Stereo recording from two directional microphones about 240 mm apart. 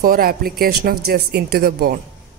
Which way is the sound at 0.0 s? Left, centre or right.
Right.